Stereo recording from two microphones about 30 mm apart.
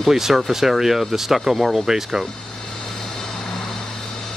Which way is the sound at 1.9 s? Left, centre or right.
Centre.